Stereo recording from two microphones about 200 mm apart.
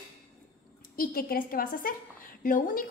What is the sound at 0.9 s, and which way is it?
A woman's voice, 45° left (ahead or behind).